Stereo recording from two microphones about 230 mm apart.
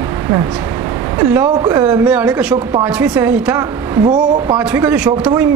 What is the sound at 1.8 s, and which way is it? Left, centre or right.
A man's voice, centre.